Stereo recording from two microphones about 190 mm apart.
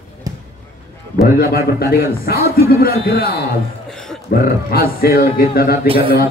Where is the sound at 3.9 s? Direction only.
Centre (ahead or behind).